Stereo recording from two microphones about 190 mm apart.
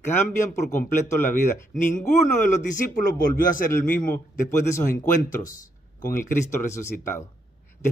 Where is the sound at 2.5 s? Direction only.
40° left (ahead or behind).